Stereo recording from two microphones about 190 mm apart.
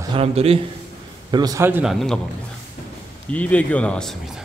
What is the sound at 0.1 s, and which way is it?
Speech, 30° right (ahead or behind).